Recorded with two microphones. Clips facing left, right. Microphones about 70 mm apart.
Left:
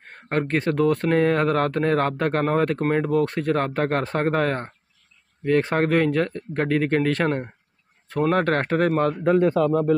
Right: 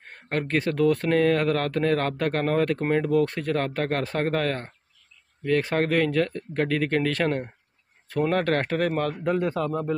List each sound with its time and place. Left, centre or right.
0.1 s speech: centre
8.3 s speech: centre
9.2 s speech: left